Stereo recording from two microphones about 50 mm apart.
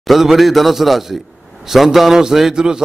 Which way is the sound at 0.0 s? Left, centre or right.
Centre.